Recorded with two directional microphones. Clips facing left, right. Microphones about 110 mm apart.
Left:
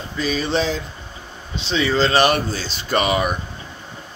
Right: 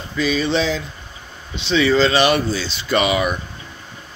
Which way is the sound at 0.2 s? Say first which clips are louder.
Right 2 dB; 40° left (ahead or behind).